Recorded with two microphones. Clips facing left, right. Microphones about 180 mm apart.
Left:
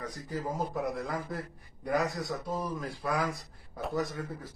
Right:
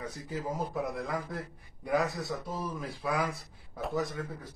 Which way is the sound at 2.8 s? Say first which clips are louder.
Even; centre (ahead or behind).